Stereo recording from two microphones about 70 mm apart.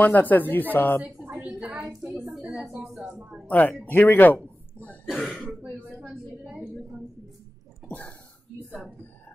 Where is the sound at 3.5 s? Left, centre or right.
Left.